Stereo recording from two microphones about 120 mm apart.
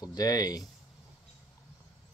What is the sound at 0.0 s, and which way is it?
Speech, 30° left (ahead or behind).